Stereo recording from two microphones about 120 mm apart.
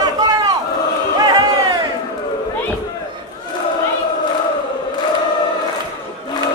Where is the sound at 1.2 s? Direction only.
35° right (ahead or behind).